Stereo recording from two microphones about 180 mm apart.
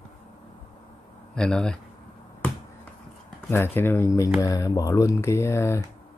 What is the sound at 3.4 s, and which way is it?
A man's voice, 10° left (ahead or behind).